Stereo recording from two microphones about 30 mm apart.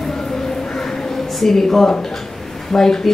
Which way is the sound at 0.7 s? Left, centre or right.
Centre.